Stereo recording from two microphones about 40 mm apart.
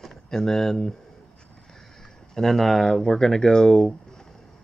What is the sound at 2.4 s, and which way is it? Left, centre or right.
Speech, centre.